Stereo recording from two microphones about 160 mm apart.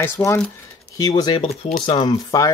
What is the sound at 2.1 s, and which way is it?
Speech, 20° left (ahead or behind).